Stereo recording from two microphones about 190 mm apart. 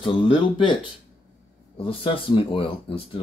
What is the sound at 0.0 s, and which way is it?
Speech, 25° left (ahead or behind).